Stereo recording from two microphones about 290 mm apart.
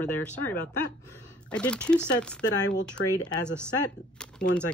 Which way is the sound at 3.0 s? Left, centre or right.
Left.